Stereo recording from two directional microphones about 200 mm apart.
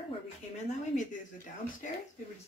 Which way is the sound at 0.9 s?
40° left (ahead or behind).